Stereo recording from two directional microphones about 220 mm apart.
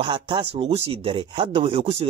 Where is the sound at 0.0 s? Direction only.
20° right (ahead or behind).